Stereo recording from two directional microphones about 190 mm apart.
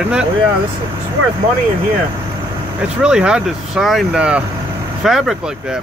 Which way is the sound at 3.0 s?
5° right (ahead or behind).